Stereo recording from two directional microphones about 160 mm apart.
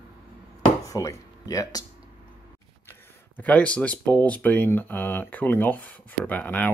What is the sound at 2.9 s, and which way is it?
Speech, 10° left (ahead or behind).